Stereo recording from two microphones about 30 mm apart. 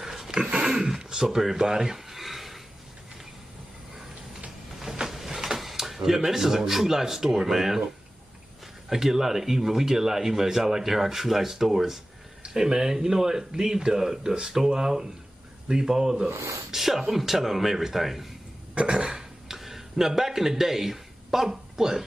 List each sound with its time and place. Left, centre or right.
0.0 s dog: centre
0.3 s dog: right
0.6 s a sound: centre
5.1 s a sound: centre
6.0 s speech: centre
8.8 s speech: centre
16.7 s speech: centre
18.9 s burping: right
19.4 s a sound: centre